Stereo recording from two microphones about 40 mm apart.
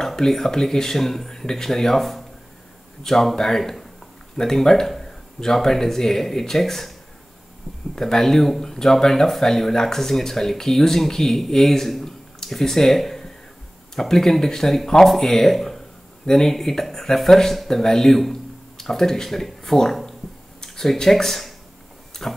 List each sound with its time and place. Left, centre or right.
0.0 s speech: centre
7.9 s speech: centre